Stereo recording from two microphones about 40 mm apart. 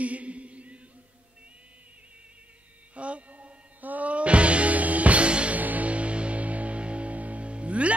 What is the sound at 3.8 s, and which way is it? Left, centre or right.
Music, right.